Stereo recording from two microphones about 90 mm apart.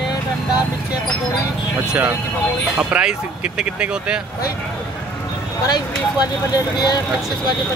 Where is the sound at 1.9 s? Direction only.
15° right (ahead or behind).